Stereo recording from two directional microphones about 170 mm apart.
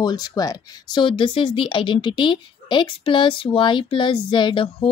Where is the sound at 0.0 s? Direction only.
20° left (ahead or behind).